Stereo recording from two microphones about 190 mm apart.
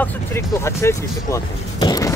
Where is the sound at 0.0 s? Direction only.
10° left (ahead or behind).